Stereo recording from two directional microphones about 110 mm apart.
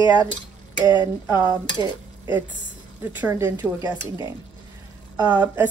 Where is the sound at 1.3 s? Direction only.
20° right (ahead or behind).